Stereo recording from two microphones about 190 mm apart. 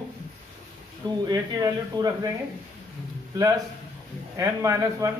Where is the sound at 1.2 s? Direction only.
20° right (ahead or behind).